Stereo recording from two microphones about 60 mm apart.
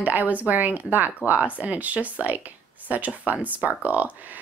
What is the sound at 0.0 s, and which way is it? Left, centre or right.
Speech, right.